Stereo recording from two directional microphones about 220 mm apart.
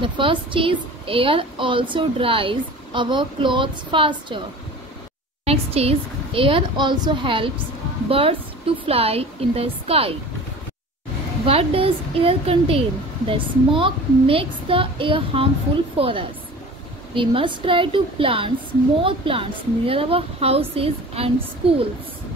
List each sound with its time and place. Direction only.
0.0 s a woman's voice: 20° right (ahead or behind)
5.4 s a woman's voice: 25° right (ahead or behind)
11.4 s a woman's voice: 25° right (ahead or behind)